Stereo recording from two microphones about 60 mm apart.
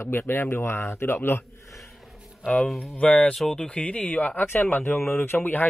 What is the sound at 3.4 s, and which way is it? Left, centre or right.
Speech, centre.